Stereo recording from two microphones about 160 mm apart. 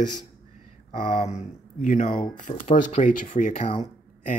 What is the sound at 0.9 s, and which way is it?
Speech, 50° left (ahead or behind).